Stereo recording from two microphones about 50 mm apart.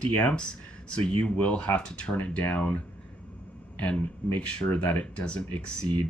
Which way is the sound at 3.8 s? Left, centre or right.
Left.